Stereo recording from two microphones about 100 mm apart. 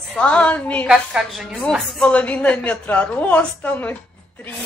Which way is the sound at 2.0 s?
15° left (ahead or behind).